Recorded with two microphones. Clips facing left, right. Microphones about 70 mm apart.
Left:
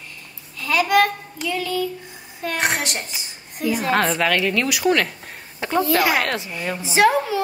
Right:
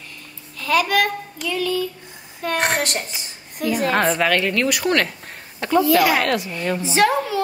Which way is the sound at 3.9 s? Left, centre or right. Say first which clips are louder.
Even; centre.